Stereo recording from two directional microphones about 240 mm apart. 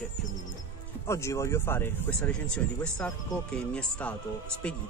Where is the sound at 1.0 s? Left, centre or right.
Centre.